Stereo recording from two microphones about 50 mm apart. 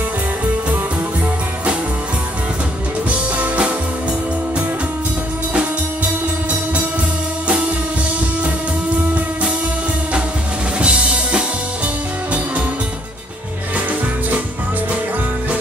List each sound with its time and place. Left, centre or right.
3.1 s music: right
7.4 s music: right
10.8 s drum kit: right